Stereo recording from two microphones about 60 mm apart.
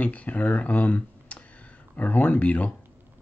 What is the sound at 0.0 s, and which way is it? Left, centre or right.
Speech, left.